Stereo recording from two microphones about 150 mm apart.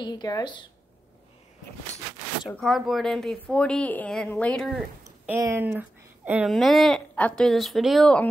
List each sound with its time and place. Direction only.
0.0 s speech: 30° left (ahead or behind)
2.5 s a woman's voice: centre (ahead or behind)
5.4 s speech: 15° right (ahead or behind)
6.4 s speech: centre (ahead or behind)